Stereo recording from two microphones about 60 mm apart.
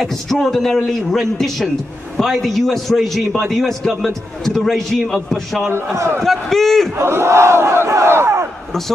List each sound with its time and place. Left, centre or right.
0.0 s a man's voice: centre
5.9 s battle cry: right
6.2 s a man's voice: centre
7.0 s battle cry: right